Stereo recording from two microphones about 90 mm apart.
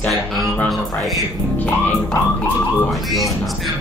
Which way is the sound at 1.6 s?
15° left (ahead or behind).